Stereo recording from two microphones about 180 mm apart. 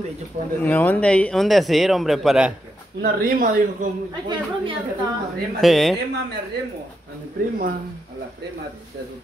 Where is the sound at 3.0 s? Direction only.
55° right (ahead or behind).